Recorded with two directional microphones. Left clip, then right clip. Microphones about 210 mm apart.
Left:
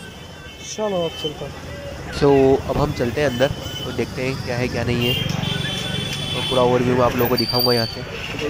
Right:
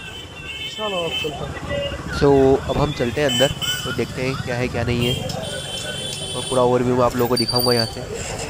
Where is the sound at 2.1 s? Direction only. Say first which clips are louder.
Even; centre (ahead or behind).